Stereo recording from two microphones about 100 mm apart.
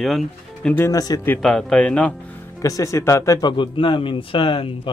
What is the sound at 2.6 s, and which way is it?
Speech, 35° left (ahead or behind).